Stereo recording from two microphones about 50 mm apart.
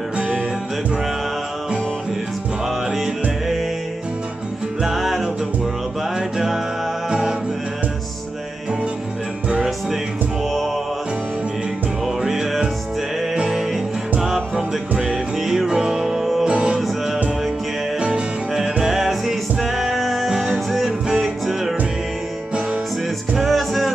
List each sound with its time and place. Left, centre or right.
2.9 s music: centre
4.8 s music: centre
12.2 s music: centre
16.4 s music: right
17.9 s music: centre
18.5 s music: centre
23.3 s music: centre